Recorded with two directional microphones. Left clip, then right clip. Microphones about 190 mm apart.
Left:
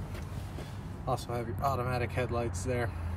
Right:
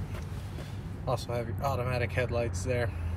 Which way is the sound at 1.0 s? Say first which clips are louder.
Right 2 dB; 15° left (ahead or behind).